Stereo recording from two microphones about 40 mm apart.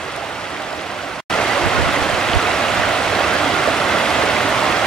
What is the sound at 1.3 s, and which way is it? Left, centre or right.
Stream, centre.